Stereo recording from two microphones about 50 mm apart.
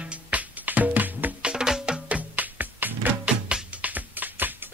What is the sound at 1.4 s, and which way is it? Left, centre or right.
Music, centre.